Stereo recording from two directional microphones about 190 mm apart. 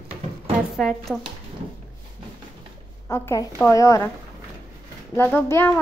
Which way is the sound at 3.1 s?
15° left (ahead or behind).